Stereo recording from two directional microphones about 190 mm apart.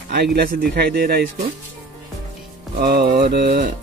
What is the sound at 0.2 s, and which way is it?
Speech, 55° right (ahead or behind).